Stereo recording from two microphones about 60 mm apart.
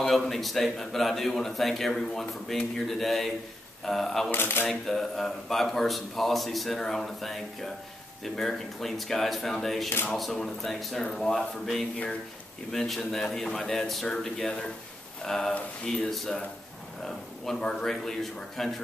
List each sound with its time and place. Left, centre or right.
0.0 s a man's voice: centre
4.3 s speech: left
4.6 s a man's voice: centre
12.7 s a man's voice: centre